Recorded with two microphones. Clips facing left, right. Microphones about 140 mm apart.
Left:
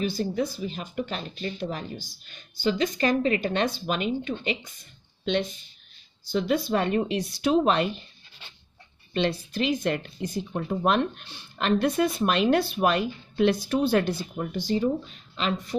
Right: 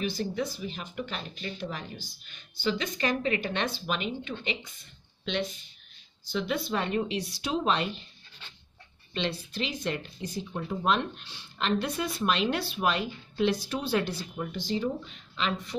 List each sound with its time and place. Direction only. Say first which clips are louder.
0.0 s speech: left 4 dB; 35° left (ahead or behind)
6.3 s speech: left 6 dB; 40° left (ahead or behind)
9.1 s speech: left 6 dB; 50° left (ahead or behind)